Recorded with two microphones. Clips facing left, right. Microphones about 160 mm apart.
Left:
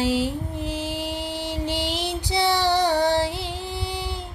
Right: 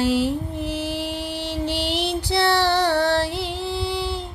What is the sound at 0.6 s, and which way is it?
Female singing, 15° left (ahead or behind).